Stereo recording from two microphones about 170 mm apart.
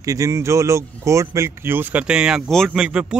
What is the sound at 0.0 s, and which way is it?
Speech, 20° right (ahead or behind).